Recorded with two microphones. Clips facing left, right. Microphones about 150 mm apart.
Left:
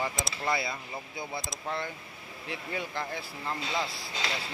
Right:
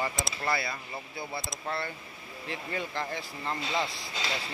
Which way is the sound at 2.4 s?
10° left (ahead or behind).